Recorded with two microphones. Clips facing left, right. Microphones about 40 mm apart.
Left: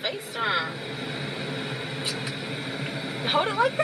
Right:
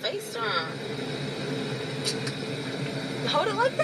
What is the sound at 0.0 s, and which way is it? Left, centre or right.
Speech, left.